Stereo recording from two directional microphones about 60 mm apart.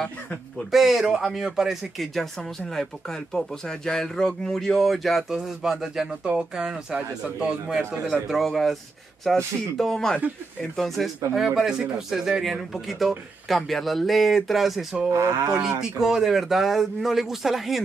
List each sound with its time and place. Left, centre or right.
0.7 s speech: centre
2.6 s speech: centre
8.1 s speech: centre
11.3 s speech: centre
15.0 s speech: right
15.6 s speech: centre